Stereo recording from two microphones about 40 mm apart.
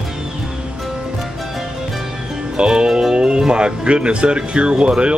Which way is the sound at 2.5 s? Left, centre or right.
Right.